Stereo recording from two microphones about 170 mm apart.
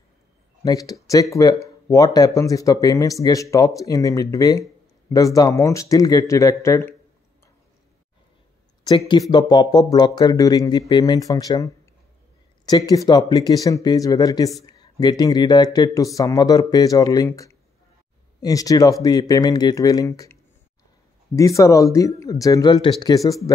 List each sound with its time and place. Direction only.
0.7 s speech: 20° left (ahead or behind)
8.8 s speech: 25° left (ahead or behind)
18.4 s speech: 20° left (ahead or behind)
21.4 s speech: 20° left (ahead or behind)